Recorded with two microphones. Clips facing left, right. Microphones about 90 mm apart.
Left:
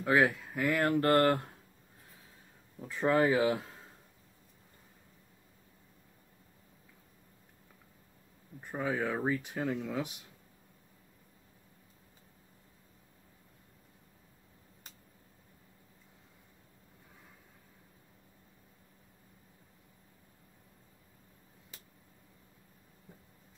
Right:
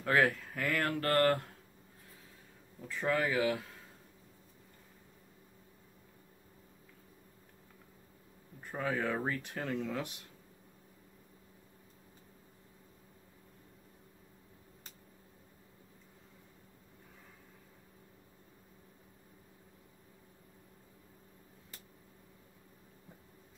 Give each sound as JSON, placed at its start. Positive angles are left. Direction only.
{"t": 0.0, "sound": "speech", "side_deg": 10}
{"t": 2.8, "sound": "speech", "side_deg": 20}
{"t": 8.5, "sound": "speech", "side_deg": 10}